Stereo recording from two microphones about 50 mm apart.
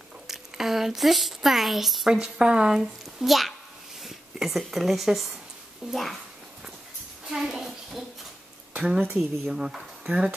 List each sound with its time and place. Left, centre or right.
0.3 s speech: centre
2.1 s speech: centre
3.3 s a child's voice: centre
7.2 s a sound: centre
8.7 s speech: centre
9.5 s speech: centre